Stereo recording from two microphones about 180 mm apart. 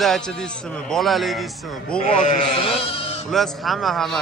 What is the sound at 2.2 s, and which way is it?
Speech, 40° left (ahead or behind).